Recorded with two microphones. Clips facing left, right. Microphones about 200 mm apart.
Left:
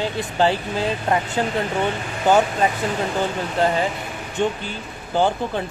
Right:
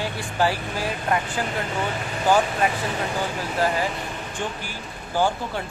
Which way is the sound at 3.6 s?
25° left (ahead or behind).